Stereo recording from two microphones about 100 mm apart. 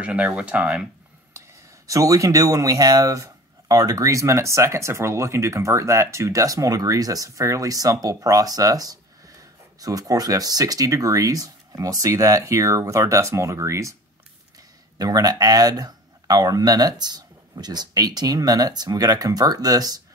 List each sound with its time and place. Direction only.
0.0 s speech: 15° right (ahead or behind)
1.9 s speech: 35° right (ahead or behind)
15.0 s speech: 40° right (ahead or behind)